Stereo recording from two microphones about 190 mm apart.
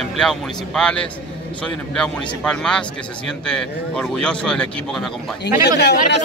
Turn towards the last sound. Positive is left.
turn(degrees=60)  # may be behind; listen again after turning